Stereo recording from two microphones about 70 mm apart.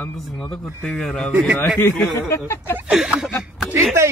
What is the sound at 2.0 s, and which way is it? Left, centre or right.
Speech, left.